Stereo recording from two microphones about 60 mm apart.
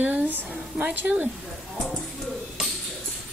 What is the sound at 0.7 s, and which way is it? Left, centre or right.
Speech, right.